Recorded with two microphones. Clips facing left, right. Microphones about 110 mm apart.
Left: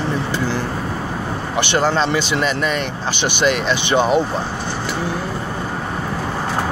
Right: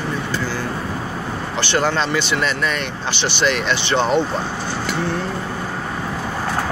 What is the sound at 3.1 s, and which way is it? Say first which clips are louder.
Speech: left 1 dB; 50° left (ahead or behind).